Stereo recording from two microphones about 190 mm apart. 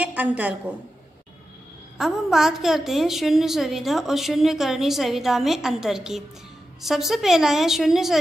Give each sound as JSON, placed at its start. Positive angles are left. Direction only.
{"t": 0.0, "sound": "a woman's voice", "side_deg": -10}
{"t": 2.0, "sound": "a woman's voice", "side_deg": 0}